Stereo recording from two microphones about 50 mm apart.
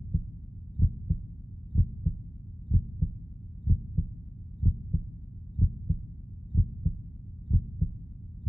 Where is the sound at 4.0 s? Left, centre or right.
Centre.